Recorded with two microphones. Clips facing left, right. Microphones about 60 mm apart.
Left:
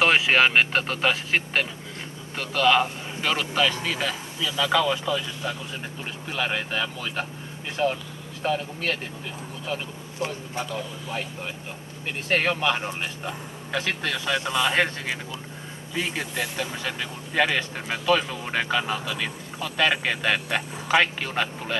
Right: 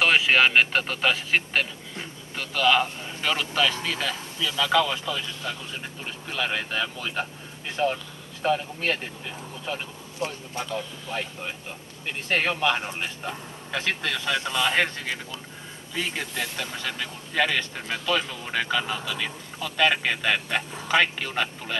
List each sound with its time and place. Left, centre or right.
0.0 s speech: centre
10.2 s speech: left
12.3 s speech: centre
14.1 s speech: centre